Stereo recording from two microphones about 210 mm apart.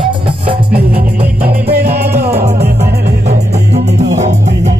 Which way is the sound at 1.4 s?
45° right (ahead or behind).